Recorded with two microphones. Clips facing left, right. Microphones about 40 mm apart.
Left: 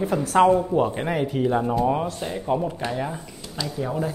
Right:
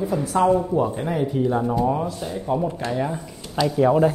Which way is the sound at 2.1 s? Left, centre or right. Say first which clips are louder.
Even; left.